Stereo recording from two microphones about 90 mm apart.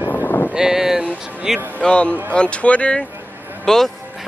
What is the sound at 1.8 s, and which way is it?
A man's voice, 10° left (ahead or behind).